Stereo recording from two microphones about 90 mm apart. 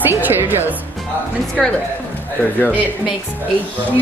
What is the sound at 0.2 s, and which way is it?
Speech, 20° right (ahead or behind).